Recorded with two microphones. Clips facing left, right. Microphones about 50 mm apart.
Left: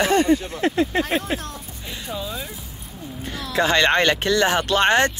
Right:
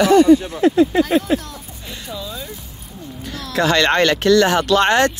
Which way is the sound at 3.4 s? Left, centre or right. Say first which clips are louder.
Right 2 dB; centre.